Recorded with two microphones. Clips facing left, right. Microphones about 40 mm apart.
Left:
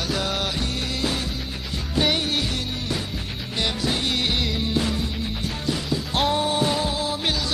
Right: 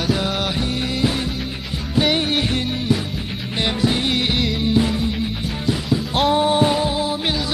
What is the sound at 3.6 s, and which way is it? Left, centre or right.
Music, right.